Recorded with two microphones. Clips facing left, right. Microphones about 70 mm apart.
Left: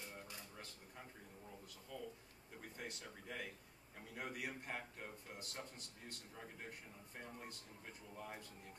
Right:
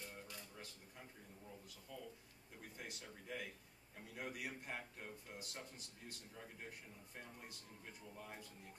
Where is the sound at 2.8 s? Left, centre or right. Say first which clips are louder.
Left 2 dB; centre.